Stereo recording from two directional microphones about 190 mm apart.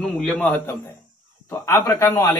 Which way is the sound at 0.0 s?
5° left (ahead or behind).